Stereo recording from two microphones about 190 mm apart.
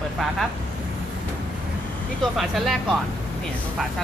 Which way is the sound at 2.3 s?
Centre (ahead or behind).